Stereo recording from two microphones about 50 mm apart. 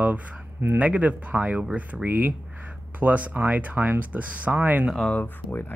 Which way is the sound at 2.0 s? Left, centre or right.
Right.